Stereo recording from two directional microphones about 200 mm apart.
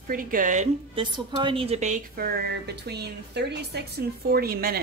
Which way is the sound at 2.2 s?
55° right (ahead or behind).